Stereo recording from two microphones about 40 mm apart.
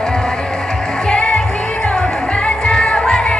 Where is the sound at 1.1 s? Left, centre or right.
Left.